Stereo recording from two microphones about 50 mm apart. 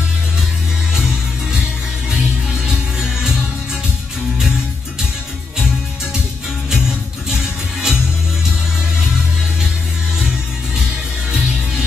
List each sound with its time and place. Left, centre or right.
2.7 s music: centre
6.7 s music: centre